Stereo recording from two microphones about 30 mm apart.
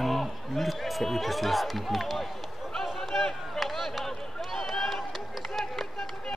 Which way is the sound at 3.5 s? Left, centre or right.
Centre.